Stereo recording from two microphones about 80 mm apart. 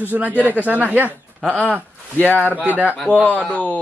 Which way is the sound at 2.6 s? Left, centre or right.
Centre.